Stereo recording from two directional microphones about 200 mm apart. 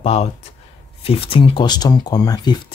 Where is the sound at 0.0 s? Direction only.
30° left (ahead or behind).